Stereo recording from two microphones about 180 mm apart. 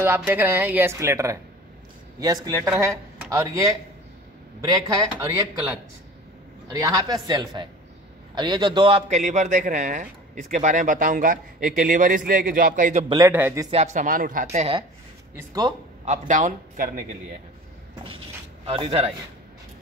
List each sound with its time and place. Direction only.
0.0 s speech: 10° right (ahead or behind)
6.7 s speech: 20° right (ahead or behind)
9.1 s speech: 40° right (ahead or behind)
13.3 s speech: 10° right (ahead or behind)
13.7 s speech: 40° right (ahead or behind)
15.3 s speech: 20° right (ahead or behind)
16.1 s speech: 45° right (ahead or behind)
18.7 s speech: 30° right (ahead or behind)